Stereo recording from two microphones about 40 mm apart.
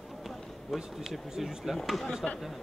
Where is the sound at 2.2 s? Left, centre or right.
Left.